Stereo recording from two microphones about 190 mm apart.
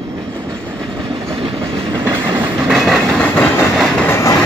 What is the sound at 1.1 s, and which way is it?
Train, 25° right (ahead or behind).